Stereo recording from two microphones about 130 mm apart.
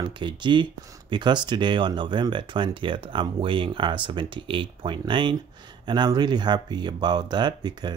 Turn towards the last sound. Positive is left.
turn(degrees=-35)  # may be behind; listen again after turning